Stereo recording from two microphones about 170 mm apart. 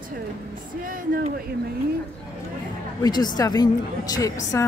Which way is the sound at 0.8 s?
55° right (ahead or behind).